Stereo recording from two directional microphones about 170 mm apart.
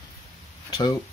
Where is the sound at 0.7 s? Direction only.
25° left (ahead or behind).